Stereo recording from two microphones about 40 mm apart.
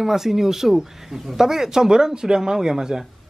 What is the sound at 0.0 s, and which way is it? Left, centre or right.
Speech, centre.